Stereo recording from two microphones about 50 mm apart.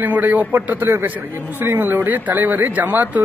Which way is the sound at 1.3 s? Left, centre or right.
Right.